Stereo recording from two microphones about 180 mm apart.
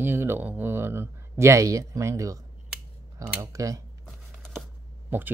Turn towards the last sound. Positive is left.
turn(degrees=-10)  # may be behind; listen again after turning